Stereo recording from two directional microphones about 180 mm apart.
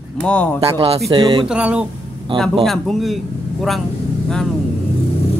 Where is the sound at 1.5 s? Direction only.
5° right (ahead or behind).